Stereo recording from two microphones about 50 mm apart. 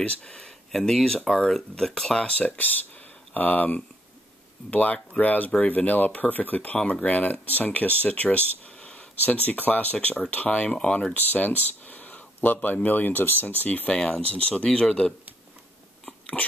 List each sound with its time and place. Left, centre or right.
0.2 s speech: centre
2.2 s speech: left
11.1 s a sound: left
12.6 s speech: left
13.8 s speech: centre